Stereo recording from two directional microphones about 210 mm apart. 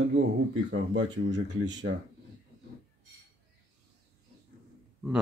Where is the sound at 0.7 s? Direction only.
55° right (ahead or behind).